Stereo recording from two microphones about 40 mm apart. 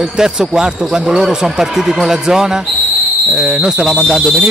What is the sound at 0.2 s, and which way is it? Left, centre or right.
Speech, centre.